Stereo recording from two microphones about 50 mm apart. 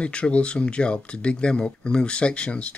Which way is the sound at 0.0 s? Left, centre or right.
Left.